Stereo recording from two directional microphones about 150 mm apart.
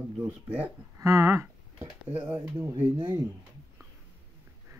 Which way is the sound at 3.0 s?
35° right (ahead or behind).